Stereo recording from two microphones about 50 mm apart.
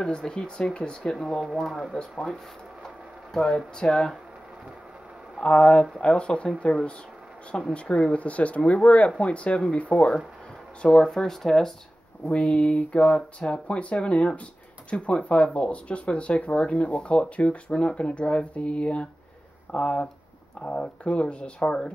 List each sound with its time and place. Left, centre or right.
0.0 s speech: centre
2.2 s speech: centre
5.4 s speech: centre
9.9 s speech: centre